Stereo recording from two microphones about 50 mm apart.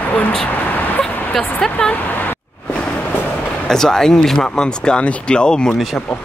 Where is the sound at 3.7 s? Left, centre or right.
Centre.